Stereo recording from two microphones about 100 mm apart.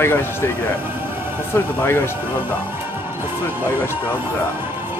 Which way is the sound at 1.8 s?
20° left (ahead or behind).